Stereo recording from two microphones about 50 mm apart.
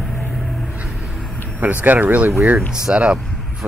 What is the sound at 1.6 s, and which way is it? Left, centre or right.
Speech, right.